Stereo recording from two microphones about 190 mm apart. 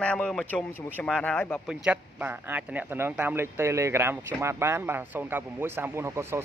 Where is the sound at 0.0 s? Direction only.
5° left (ahead or behind).